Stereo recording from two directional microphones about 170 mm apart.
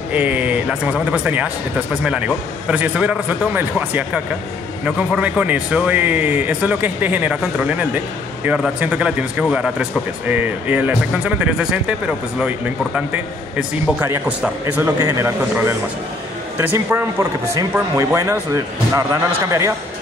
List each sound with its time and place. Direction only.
0.1 s a man's voice: 10° right (ahead or behind)